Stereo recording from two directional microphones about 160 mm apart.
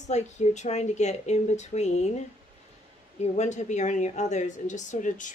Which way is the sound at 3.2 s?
45° left (ahead or behind).